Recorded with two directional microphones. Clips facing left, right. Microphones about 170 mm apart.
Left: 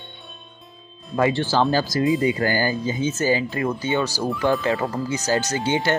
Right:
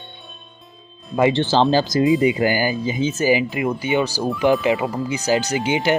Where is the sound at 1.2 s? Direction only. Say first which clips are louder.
Right 3 dB; 25° right (ahead or behind).